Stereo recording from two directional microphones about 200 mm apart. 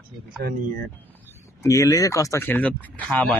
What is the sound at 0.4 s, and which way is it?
Speech, 45° right (ahead or behind).